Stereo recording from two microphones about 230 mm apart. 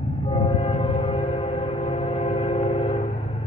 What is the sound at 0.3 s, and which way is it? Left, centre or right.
Train, left.